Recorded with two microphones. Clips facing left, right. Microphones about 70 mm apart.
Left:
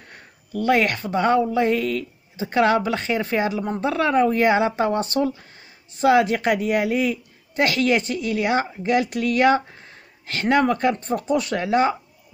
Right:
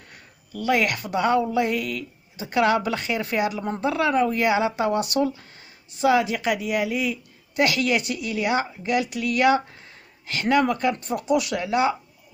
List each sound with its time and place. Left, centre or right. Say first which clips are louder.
0.7 s a woman's voice: left 3 dB; left
3.5 s a woman's voice: left 3 dB; centre
3.8 s a woman's voice: left 2 dB; left
5.9 s a woman's voice: left 3 dB; left
10.3 s a woman's voice: left 2 dB; left